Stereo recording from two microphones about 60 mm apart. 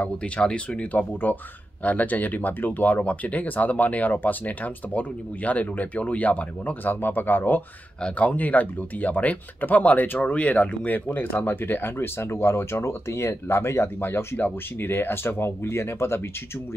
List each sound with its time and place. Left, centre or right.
0.0 s speech: centre; by 16.2 s left